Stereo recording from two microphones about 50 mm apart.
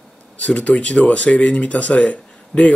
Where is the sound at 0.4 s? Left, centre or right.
Left.